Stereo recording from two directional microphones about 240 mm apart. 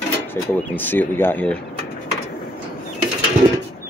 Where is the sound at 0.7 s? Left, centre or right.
Centre.